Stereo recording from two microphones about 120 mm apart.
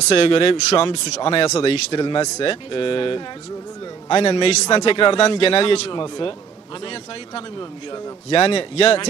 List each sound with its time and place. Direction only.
0.1 s a man's voice: 50° left (ahead or behind)